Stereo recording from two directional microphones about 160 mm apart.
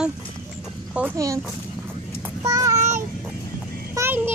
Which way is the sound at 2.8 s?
50° right (ahead or behind).